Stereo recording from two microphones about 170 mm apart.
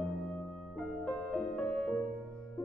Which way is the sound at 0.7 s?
5° left (ahead or behind).